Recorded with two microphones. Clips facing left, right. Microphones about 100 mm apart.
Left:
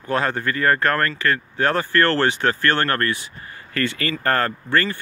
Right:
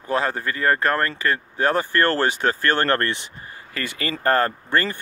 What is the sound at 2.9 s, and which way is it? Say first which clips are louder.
Speech: right 1 dB; 25° right (ahead or behind).